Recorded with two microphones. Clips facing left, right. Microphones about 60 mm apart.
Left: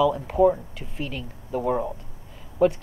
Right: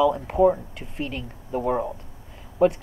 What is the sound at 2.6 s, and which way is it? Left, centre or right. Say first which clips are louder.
Speech: right 1 dB; centre.